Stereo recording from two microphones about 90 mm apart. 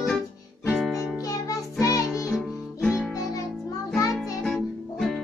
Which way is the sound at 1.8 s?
40° left (ahead or behind).